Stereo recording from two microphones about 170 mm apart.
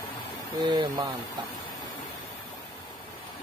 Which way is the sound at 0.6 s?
25° right (ahead or behind).